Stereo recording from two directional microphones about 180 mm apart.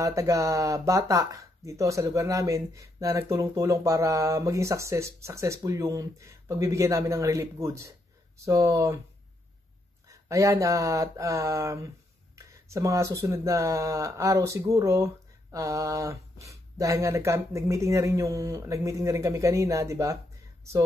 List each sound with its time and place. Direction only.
0.0 s speech: 15° right (ahead or behind)
10.0 s speech: 15° right (ahead or behind)